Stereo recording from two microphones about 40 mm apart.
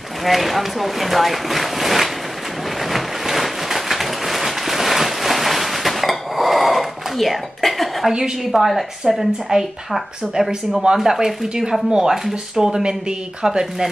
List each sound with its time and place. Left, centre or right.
0.2 s speech: centre
2.8 s a sound: centre
8.5 s a woman's voice: centre
12.1 s speech: centre
12.6 s a woman's voice: centre